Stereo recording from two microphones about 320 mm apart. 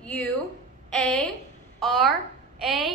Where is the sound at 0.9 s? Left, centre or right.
Centre.